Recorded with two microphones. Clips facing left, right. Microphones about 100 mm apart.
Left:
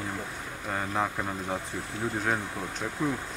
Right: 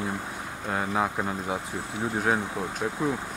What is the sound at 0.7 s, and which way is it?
Speech, 10° right (ahead or behind).